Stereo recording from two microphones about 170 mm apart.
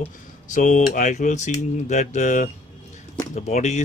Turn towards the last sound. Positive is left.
turn(degrees=40)  # may be behind; listen again after turning